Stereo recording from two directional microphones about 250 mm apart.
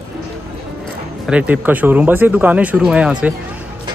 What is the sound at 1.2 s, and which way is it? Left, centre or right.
A man's voice, centre.